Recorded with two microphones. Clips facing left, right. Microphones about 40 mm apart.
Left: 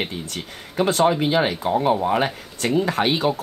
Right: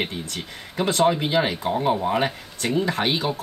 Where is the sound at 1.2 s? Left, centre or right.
Left.